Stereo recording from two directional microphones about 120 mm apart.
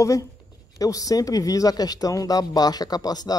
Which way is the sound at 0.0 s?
25° left (ahead or behind).